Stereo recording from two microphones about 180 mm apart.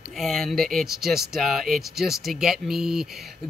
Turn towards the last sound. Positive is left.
turn(degrees=0)  # may be behind; listen again after turning